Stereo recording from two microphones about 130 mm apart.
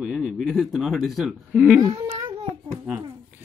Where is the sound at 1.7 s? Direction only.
30° right (ahead or behind).